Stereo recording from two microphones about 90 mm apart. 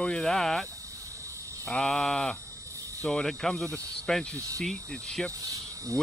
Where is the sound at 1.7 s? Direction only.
5° left (ahead or behind).